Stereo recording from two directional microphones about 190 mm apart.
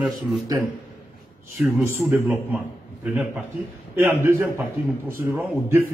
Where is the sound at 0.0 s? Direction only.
Centre (ahead or behind).